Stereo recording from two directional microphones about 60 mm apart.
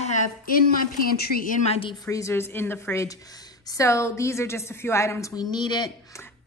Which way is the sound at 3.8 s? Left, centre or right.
Left.